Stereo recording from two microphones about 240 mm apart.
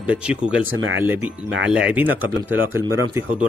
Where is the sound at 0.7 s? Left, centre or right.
Right.